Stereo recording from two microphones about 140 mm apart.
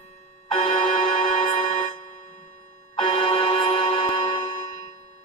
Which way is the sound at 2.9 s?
35° left (ahead or behind).